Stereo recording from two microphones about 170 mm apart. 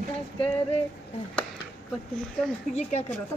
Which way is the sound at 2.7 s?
40° left (ahead or behind).